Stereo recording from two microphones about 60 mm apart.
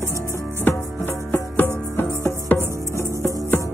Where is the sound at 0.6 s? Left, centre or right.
Left.